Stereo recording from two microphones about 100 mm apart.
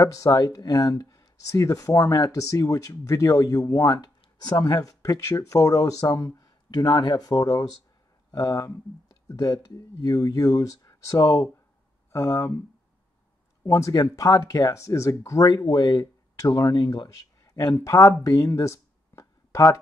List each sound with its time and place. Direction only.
0.0 s speech: 35° left (ahead or behind)
13.7 s speech: 30° left (ahead or behind)
15.4 s speech: 45° left (ahead or behind)
17.8 s speech: 30° left (ahead or behind)
18.2 s a sound: 30° left (ahead or behind)